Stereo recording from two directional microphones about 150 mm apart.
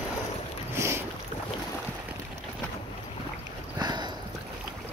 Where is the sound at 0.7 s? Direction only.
20° right (ahead or behind).